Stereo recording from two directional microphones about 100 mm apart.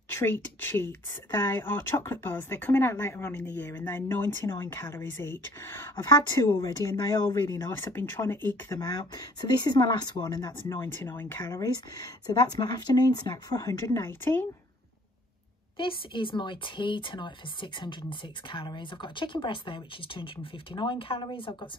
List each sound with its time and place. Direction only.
0.1 s speech: 25° left (ahead or behind)
6.6 s speech: 35° left (ahead or behind)
8.6 s speech: 40° left (ahead or behind)
10.7 s speech: 25° left (ahead or behind)
11.4 s speech: 35° left (ahead or behind)
14.0 s speech: 20° left (ahead or behind)
15.8 s speech: 60° left (ahead or behind)